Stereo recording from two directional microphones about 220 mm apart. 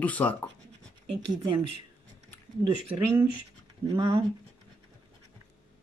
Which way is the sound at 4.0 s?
20° right (ahead or behind).